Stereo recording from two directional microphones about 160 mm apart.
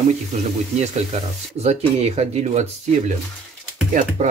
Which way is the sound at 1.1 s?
45° right (ahead or behind).